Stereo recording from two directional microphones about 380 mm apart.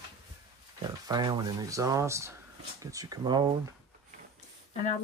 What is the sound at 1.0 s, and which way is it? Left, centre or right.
Speech, centre.